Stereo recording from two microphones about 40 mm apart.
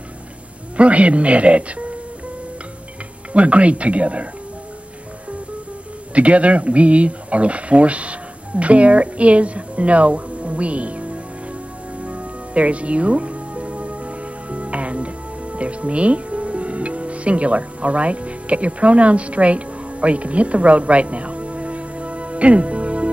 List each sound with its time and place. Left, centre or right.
0.7 s speech: right
3.3 s speech: right
6.1 s speech: right
12.0 s music: right